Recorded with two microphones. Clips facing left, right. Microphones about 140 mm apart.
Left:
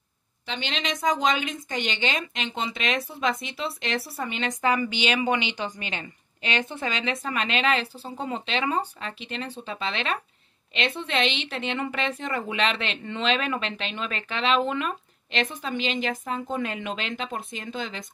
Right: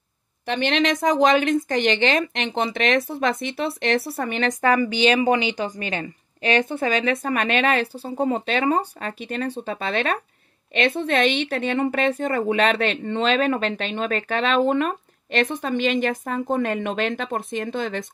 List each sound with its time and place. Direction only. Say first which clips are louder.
0.5 s a woman's voice: right 10 dB; 60° right (ahead or behind)